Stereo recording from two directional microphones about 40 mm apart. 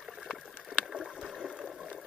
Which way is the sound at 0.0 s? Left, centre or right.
Centre.